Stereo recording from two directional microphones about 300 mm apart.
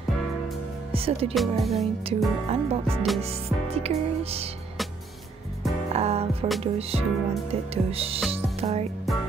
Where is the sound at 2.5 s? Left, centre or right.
Right.